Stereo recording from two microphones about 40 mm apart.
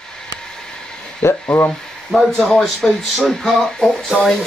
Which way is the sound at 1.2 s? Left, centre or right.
Left.